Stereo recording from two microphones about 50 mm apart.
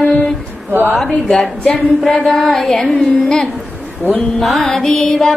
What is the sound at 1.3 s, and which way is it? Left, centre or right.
Speech, centre.